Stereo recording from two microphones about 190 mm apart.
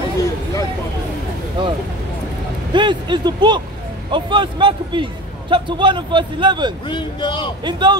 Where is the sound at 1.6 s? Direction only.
25° right (ahead or behind).